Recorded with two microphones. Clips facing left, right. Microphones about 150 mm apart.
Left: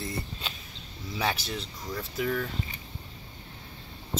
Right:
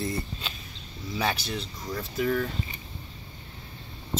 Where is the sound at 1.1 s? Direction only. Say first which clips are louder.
Right 1 dB; 5° left (ahead or behind).